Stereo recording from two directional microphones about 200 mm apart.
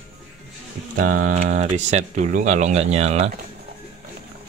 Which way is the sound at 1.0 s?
40° right (ahead or behind).